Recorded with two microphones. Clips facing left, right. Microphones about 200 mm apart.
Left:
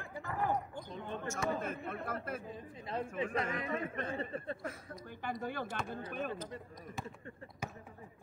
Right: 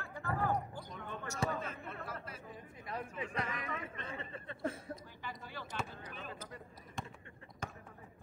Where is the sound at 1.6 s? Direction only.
50° left (ahead or behind).